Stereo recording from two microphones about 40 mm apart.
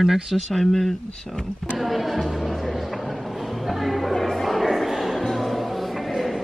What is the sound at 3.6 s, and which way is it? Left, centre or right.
Music, centre.